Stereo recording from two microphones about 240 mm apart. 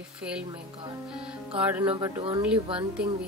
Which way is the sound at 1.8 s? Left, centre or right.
Centre.